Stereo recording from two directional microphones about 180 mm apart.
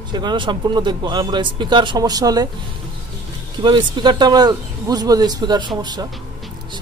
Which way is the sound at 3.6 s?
25° right (ahead or behind).